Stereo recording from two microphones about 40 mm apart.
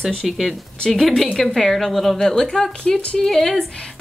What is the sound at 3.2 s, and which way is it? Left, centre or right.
Speech, centre.